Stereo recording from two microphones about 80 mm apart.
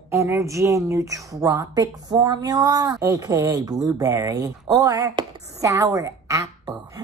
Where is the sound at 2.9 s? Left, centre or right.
Right.